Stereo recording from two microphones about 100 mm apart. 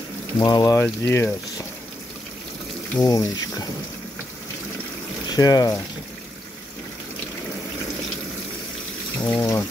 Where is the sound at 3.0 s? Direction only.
35° left (ahead or behind).